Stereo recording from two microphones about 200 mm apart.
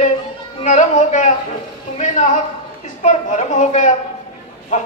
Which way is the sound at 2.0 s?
35° left (ahead or behind).